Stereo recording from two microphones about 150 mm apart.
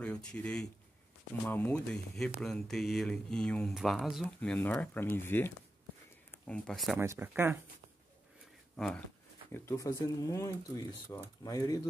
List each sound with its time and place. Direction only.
0.0 s speech: 5° left (ahead or behind)
4.4 s speech: 10° left (ahead or behind)
6.4 s speech: 5° left (ahead or behind)
7.0 s speech: 15° right (ahead or behind)
8.7 s speech: 5° left (ahead or behind)
9.5 s speech: 20° left (ahead or behind)